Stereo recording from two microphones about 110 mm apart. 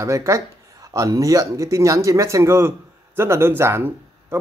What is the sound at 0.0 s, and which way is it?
Speech, 30° right (ahead or behind).